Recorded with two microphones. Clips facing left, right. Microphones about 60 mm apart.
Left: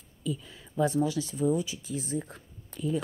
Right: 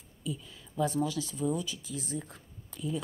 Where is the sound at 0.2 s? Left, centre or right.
Left.